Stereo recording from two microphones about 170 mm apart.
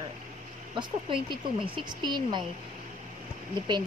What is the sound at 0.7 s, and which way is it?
Speech, 25° right (ahead or behind).